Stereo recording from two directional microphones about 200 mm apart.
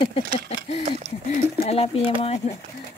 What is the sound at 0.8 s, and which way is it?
Speech, 35° right (ahead or behind).